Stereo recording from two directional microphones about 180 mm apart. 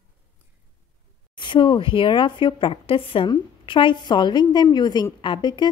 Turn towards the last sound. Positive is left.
turn(degrees=25)  # may be behind; listen again after turning